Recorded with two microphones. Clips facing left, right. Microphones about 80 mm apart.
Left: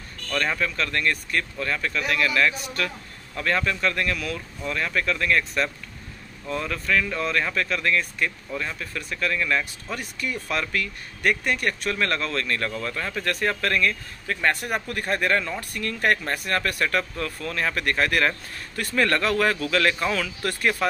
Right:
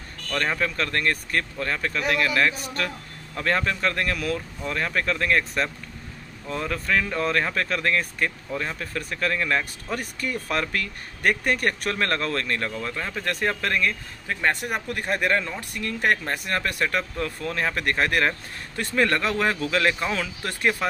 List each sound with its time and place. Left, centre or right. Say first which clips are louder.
0.3 s speech: even; right